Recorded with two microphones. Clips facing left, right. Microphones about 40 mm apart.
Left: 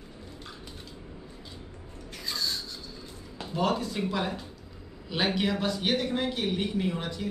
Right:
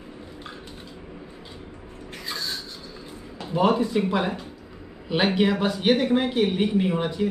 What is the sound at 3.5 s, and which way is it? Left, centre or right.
Speech, right.